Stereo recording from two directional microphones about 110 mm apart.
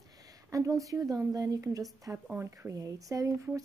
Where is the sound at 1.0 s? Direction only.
30° right (ahead or behind).